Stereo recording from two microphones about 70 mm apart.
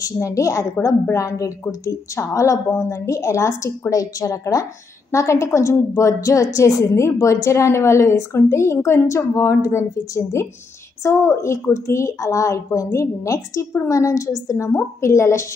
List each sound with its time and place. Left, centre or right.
0.0 s a woman's voice: left